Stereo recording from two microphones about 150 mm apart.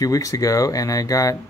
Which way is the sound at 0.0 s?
25° left (ahead or behind).